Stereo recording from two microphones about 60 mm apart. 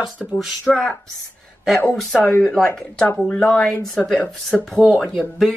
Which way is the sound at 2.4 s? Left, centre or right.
Centre.